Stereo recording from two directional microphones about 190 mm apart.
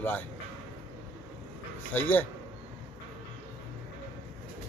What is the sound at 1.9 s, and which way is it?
Speech, 10° left (ahead or behind).